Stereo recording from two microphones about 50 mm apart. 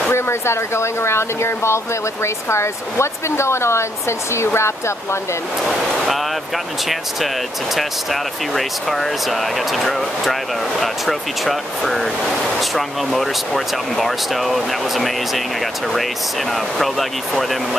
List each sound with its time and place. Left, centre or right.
0.1 s speech: left
5.7 s speech: centre
7.7 s speech: centre
16.5 s speech: centre